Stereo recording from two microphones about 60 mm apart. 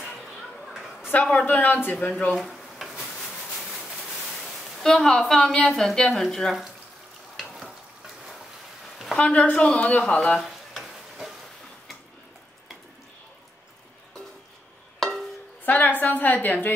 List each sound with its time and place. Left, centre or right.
0.2 s a sound: centre
1.4 s a woman's voice: left
2.3 s a sound: centre
4.8 s a woman's voice: centre
7.3 s frying: centre
9.2 s a woman's voice: left
10.4 s stir: centre
15.0 s music: centre
15.6 s a sound: left